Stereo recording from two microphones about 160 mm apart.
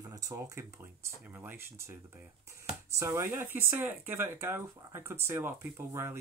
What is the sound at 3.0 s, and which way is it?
Speech, 15° right (ahead or behind).